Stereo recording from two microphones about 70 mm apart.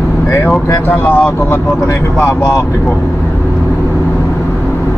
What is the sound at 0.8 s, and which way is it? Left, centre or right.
Speech, left.